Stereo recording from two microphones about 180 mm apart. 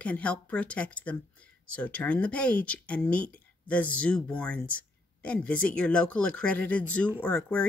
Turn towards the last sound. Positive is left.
turn(degrees=10)  # may be behind; listen again after turning